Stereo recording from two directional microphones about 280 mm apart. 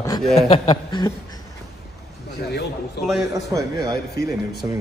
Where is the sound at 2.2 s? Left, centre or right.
Left.